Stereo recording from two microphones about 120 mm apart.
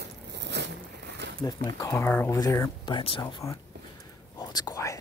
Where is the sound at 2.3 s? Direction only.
25° left (ahead or behind).